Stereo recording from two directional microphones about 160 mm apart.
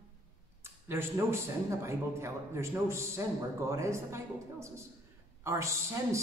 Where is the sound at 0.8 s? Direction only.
15° right (ahead or behind).